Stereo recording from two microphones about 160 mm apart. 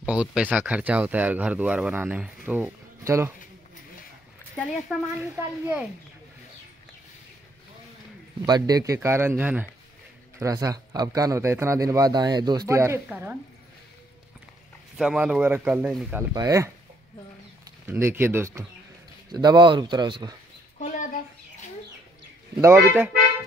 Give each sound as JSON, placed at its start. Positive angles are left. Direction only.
{"t": 0.0, "sound": "speech", "side_deg": -5}
{"t": 4.6, "sound": "speech", "side_deg": 0}
{"t": 5.2, "sound": "speech", "side_deg": -15}
{"t": 8.5, "sound": "speech", "side_deg": -25}
{"t": 15.0, "sound": "speech", "side_deg": -5}
{"t": 16.3, "sound": "speech", "side_deg": -20}
{"t": 20.8, "sound": "a sound", "side_deg": 50}
{"t": 22.6, "sound": "speech", "side_deg": -15}